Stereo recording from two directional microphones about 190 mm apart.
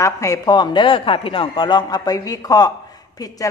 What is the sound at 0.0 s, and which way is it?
A man's voice, 15° left (ahead or behind).